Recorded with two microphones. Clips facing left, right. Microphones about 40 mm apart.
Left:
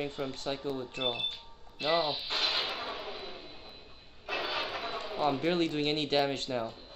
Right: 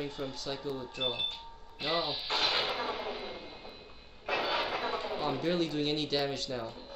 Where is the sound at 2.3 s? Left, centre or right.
Right.